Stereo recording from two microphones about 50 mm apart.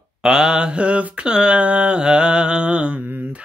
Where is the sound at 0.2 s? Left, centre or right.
Centre.